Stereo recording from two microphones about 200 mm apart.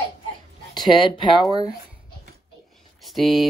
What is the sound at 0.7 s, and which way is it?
Speech, 20° left (ahead or behind).